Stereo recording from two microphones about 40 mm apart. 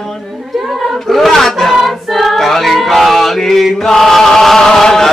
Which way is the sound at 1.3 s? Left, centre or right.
Centre.